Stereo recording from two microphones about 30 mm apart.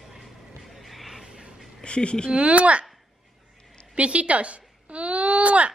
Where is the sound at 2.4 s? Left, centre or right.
Right.